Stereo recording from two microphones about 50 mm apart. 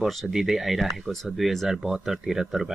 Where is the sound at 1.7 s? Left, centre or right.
Centre.